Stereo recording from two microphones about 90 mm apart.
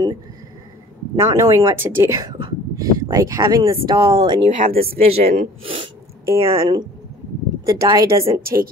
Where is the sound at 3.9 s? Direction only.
35° right (ahead or behind).